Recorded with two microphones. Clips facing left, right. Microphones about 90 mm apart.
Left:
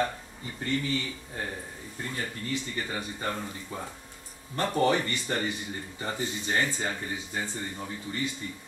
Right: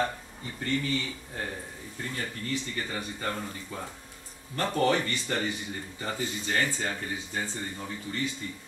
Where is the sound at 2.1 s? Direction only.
20° left (ahead or behind).